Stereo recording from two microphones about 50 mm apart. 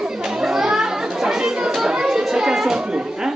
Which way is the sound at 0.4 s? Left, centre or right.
Centre.